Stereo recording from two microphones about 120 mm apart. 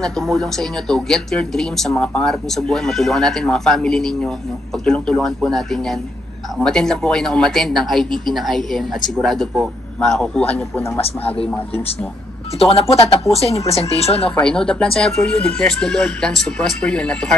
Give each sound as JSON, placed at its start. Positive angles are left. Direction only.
{"t": 0.0, "sound": "speech", "side_deg": 5}
{"t": 12.5, "sound": "speech", "side_deg": 55}
{"t": 14.3, "sound": "speech", "side_deg": 5}